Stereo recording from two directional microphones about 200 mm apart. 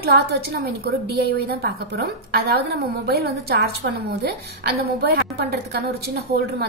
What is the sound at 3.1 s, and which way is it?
A woman's voice, 50° right (ahead or behind).